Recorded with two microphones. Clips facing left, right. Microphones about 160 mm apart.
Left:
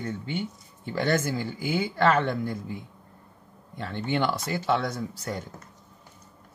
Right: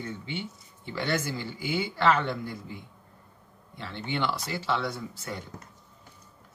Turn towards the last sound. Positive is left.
turn(degrees=40)  # may be behind; listen again after turning